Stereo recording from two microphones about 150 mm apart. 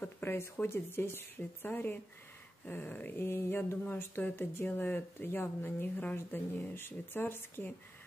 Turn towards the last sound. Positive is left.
turn(degrees=15)  # may be behind; listen again after turning